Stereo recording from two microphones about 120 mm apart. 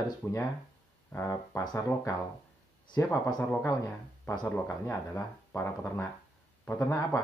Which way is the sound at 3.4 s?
15° left (ahead or behind).